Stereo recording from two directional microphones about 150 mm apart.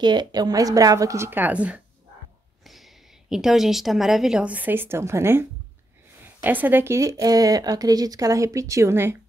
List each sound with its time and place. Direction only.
0.0 s a woman's voice: 30° right (ahead or behind); by 1.8 s 10° right (ahead or behind)
3.3 s a woman's voice: 5° right (ahead or behind)